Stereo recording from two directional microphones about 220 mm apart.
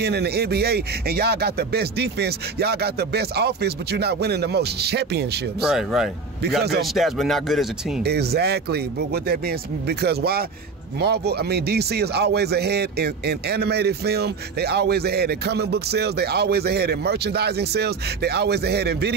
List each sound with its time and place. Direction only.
0.0 s a man's voice: 45° right (ahead or behind)
5.6 s speech: centre (ahead or behind)
6.6 s a man's voice: 45° right (ahead or behind)
6.9 s speech: centre (ahead or behind)
8.0 s a man's voice: 45° right (ahead or behind)